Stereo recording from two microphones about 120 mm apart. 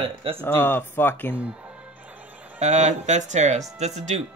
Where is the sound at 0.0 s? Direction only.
50° right (ahead or behind).